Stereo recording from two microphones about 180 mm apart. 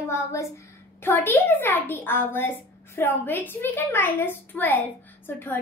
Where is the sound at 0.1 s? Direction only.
15° left (ahead or behind).